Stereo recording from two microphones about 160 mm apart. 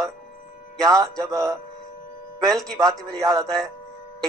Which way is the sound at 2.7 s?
20° right (ahead or behind).